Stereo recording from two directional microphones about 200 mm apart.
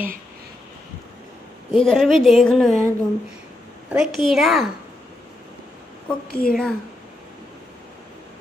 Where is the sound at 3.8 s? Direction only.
Centre (ahead or behind).